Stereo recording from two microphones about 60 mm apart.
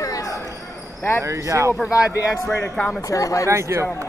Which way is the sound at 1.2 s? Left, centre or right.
Right.